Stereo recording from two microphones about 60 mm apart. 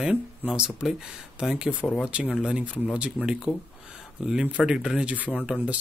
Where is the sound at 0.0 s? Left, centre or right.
Centre.